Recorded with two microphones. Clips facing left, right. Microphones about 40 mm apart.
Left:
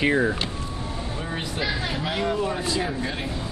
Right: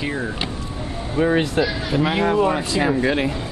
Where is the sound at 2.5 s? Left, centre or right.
Right.